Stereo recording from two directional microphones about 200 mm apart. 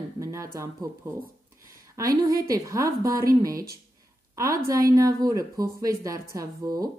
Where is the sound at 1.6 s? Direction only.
15° right (ahead or behind).